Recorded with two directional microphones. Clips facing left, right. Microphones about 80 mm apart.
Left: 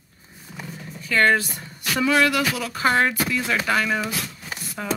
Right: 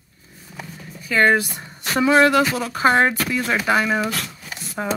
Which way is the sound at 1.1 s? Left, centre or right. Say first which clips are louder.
Right 2 dB; centre.